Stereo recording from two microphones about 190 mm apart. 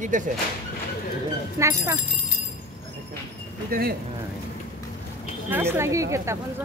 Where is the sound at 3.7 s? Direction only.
50° right (ahead or behind).